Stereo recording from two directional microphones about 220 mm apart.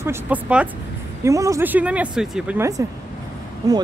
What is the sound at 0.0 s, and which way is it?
Speech, 10° right (ahead or behind).